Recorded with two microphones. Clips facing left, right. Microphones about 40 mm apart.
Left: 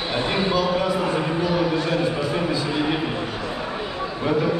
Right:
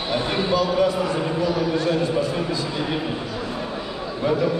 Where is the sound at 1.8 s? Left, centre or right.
Centre.